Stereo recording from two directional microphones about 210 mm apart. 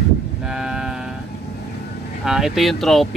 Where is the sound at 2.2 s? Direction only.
Centre (ahead or behind).